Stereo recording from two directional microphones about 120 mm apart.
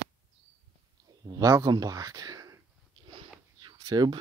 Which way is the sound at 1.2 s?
30° right (ahead or behind).